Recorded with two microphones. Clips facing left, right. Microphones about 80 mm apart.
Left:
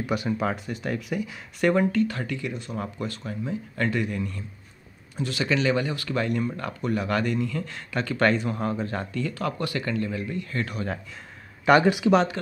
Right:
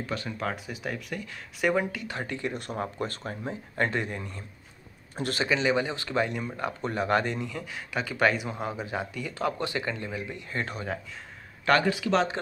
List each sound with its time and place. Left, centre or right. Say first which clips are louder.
0.0 s speech: left 6 dB; centre
0.7 s speech: left 5 dB; centre
1.6 s speech: left 5 dB; centre
2.0 s speech: left 2 dB; right
5.1 s a man's voice: left 1 dB; right
5.4 s speech: left 2 dB; centre
7.6 s speech: left 3 dB; centre
9.3 s speech: left 1 dB; right
11.8 s speech: left 6 dB; left